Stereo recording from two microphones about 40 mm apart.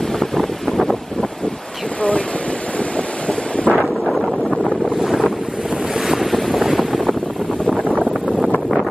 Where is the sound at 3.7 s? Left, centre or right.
Centre.